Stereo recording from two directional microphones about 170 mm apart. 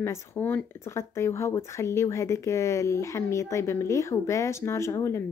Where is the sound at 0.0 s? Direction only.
15° left (ahead or behind).